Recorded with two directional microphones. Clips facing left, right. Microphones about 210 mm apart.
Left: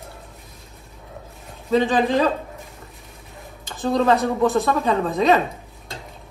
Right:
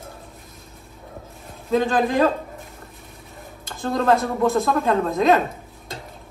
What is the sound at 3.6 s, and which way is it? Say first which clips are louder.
A woman's voice: left 1 dB; centre (ahead or behind).